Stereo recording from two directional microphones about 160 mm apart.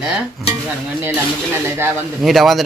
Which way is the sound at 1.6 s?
15° right (ahead or behind).